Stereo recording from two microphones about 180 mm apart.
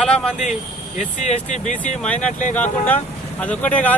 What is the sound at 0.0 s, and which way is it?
Speech, 5° left (ahead or behind).